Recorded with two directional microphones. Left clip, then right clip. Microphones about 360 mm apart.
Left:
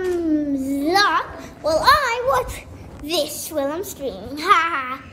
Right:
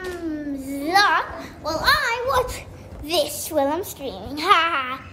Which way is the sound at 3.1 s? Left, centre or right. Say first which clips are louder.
Right 1 dB; centre.